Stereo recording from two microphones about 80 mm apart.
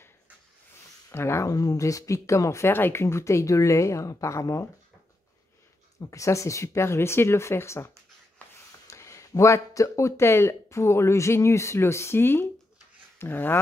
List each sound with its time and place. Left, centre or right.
1.1 s speech: left
1.5 s speech: left
5.9 s speech: left